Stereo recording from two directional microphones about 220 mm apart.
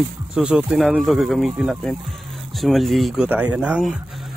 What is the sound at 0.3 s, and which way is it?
Speech, 5° right (ahead or behind).